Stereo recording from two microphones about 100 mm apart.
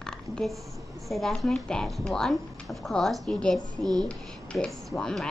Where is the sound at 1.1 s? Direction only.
Centre (ahead or behind).